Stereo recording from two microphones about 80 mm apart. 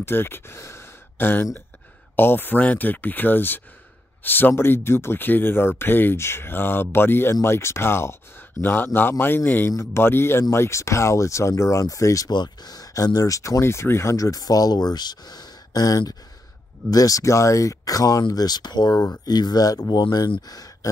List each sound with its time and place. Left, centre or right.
0.0 s speech: left
12.3 s speech: left
20.4 s speech: left